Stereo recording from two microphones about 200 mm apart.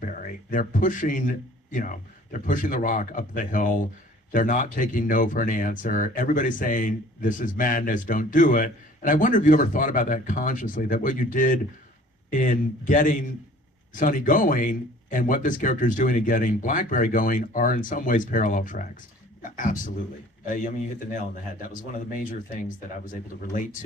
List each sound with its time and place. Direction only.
0.0 s a man's voice: 40° left (ahead or behind)